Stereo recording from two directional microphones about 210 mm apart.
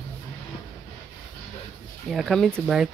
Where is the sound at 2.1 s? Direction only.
Centre (ahead or behind).